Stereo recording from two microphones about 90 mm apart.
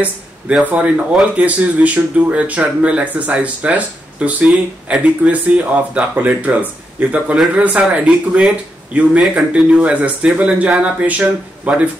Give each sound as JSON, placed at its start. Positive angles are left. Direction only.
{"t": 0.7, "sound": "speech", "side_deg": -15}